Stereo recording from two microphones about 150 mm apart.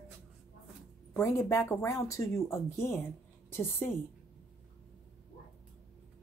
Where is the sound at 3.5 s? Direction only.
15° left (ahead or behind).